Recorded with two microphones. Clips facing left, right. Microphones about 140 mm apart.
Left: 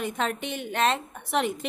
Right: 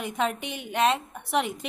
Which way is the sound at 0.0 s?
10° right (ahead or behind).